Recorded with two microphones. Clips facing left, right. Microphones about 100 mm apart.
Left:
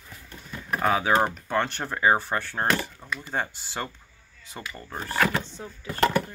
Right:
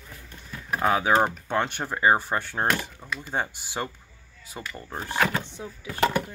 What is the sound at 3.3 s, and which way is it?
Speech, 15° right (ahead or behind).